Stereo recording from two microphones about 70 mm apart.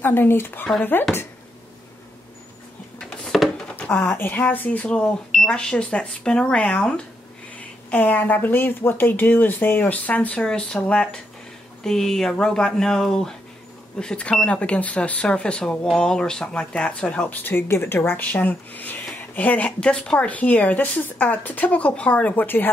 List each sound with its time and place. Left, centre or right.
0.0 s speech: left
3.0 s a sound: centre
3.7 s speech: left